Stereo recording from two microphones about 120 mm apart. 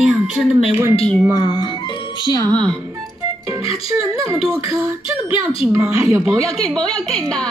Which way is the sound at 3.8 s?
30° right (ahead or behind).